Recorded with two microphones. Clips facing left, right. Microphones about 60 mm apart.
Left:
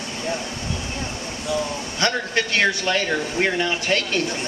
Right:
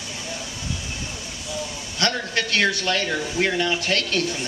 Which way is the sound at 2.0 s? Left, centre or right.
Centre.